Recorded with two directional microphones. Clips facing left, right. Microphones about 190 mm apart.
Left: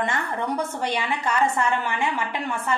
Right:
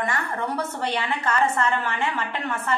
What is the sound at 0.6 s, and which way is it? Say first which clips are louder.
A woman's voice: left 1 dB; 15° left (ahead or behind).